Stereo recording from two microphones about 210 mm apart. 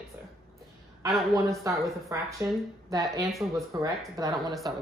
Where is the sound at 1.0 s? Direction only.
Centre (ahead or behind).